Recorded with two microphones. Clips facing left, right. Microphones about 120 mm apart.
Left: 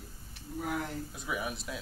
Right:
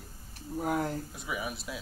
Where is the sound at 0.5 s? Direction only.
40° right (ahead or behind).